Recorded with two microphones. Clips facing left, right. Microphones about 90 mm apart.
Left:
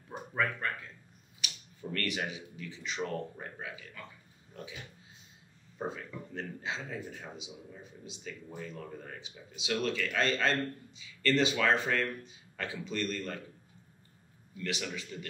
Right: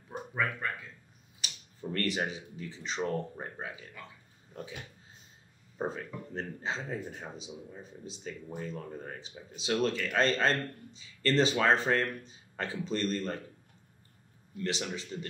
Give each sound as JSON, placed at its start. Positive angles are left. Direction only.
{"t": 0.3, "sound": "speech", "side_deg": -5}
{"t": 1.4, "sound": "speech", "side_deg": -35}
{"t": 5.8, "sound": "speech", "side_deg": -40}
{"t": 14.6, "sound": "speech", "side_deg": -30}